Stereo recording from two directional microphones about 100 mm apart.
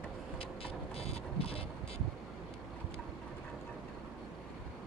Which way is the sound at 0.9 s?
85° left.